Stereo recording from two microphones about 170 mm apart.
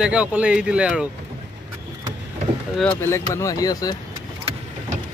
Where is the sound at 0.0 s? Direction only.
5° right (ahead or behind).